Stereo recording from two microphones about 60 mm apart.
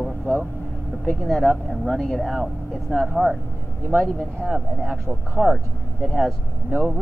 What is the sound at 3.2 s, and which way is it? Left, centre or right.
Speech, left.